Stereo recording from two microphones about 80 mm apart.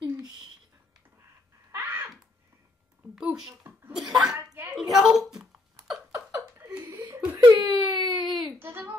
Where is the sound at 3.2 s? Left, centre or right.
Centre.